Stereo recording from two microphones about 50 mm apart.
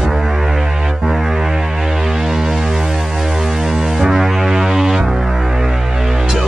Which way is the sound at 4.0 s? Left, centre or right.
Centre.